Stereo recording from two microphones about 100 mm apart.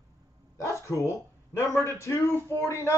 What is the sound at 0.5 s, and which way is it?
A man's voice, 30° left (ahead or behind).